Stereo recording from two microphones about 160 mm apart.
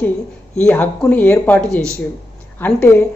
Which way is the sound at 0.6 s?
10° left (ahead or behind).